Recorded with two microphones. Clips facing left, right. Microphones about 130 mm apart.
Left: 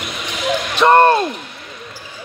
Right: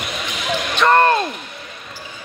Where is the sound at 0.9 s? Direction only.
25° left (ahead or behind).